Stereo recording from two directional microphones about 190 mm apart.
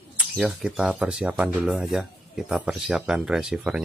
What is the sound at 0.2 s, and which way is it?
Speech, centre (ahead or behind).